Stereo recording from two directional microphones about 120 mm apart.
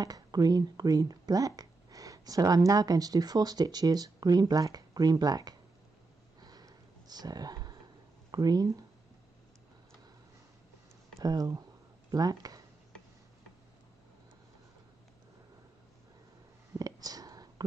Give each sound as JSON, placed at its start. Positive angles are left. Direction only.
{"t": 0.0, "sound": "speech", "side_deg": -30}
{"t": 6.4, "sound": "a sound", "side_deg": -35}
{"t": 8.3, "sound": "speech", "side_deg": -35}
{"t": 11.1, "sound": "speech", "side_deg": -30}
{"t": 16.7, "sound": "whispering", "side_deg": -30}